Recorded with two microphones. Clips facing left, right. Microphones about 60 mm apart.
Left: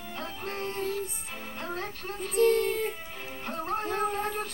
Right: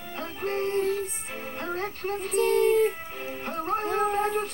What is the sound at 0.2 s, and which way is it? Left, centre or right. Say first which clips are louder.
Music: right 7 dB; right.